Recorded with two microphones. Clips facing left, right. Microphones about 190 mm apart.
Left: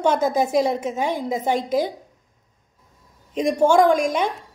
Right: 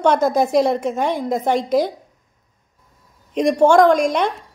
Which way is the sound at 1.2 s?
5° left (ahead or behind).